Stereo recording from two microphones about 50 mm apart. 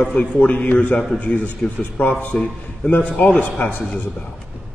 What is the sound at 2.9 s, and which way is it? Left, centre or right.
Speech, left.